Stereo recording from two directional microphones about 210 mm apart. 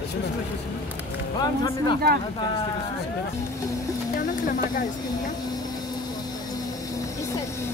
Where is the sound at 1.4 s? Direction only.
20° left (ahead or behind).